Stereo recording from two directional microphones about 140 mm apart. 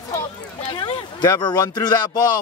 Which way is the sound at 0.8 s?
30° left (ahead or behind).